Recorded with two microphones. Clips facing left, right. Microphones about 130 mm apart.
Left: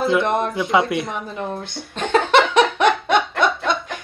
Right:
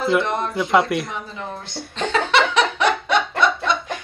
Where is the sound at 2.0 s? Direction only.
50° left (ahead or behind).